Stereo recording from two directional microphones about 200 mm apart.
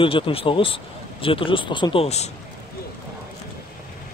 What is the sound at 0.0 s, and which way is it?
Speech, 25° left (ahead or behind).